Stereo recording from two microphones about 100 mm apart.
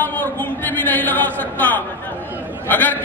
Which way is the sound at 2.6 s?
20° left (ahead or behind).